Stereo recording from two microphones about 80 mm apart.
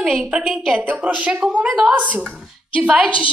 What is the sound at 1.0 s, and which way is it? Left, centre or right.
A woman's voice, centre.